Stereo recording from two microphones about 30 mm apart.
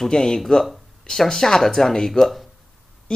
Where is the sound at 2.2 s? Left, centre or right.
Centre.